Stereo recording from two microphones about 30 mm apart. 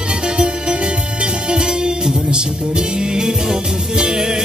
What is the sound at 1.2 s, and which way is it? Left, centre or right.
Music, right.